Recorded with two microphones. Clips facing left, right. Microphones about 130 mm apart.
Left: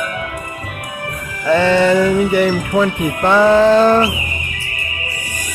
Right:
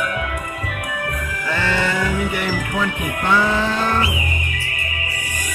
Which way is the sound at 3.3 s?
45° left (ahead or behind).